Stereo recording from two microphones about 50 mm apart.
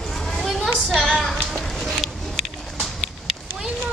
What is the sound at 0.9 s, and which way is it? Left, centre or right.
Music, centre.